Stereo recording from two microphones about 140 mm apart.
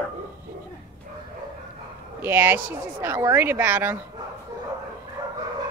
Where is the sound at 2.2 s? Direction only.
15° right (ahead or behind).